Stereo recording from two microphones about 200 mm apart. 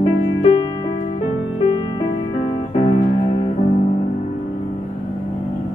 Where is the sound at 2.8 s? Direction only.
25° left (ahead or behind).